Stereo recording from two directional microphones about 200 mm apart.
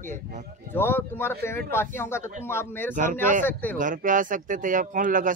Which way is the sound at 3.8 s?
40° right (ahead or behind).